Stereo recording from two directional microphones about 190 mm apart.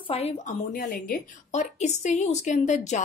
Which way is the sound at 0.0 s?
30° left (ahead or behind).